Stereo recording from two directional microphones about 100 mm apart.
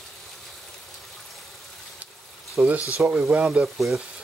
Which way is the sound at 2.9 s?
Centre (ahead or behind).